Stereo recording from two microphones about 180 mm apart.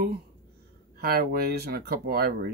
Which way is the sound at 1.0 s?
60° right (ahead or behind).